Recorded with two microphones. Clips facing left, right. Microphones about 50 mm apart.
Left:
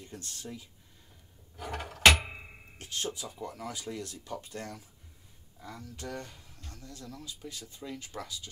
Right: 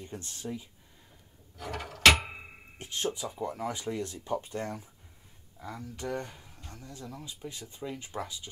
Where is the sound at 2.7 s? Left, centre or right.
Right.